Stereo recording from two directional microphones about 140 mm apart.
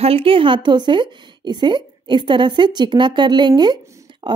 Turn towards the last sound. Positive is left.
turn(degrees=-30)  # may be behind; listen again after turning